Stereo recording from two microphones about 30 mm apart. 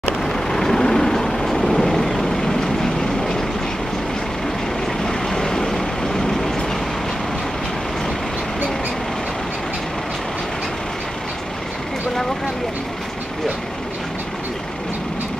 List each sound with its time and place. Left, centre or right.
0.2 s vehicle: centre
5.0 s vehicle: centre